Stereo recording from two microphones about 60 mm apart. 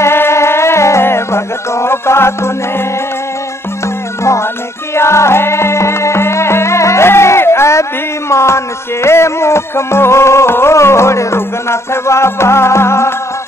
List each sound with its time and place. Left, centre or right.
0.0 s music: left
4.2 s music: left